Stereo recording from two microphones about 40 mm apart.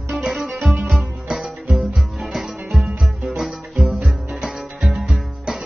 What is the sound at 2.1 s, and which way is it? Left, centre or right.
Music, centre.